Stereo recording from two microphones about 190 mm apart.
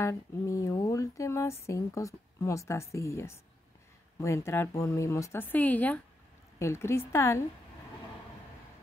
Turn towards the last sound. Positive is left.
turn(degrees=15)  # may be behind; listen again after turning